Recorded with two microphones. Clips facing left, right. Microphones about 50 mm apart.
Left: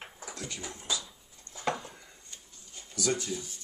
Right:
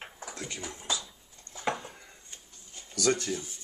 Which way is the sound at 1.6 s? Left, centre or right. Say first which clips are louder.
Even; centre.